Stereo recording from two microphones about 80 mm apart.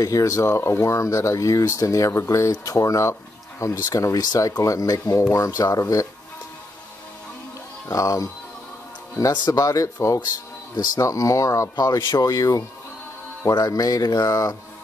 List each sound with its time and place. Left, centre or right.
0.0 s speech: left
7.9 s speech: left
9.3 s speech: left
12.0 s speech: left
12.3 s speech: left